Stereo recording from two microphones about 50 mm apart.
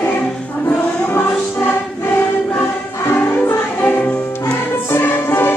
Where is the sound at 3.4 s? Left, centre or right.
Left.